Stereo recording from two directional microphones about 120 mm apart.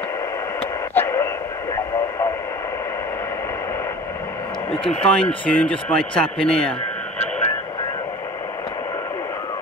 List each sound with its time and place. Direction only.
0.9 s radio: 20° left (ahead or behind)
4.8 s speech: 10° left (ahead or behind)